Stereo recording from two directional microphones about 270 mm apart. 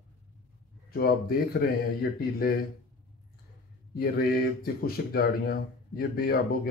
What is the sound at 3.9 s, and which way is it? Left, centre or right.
Speech, left.